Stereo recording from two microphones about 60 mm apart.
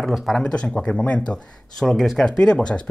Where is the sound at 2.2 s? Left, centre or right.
Centre.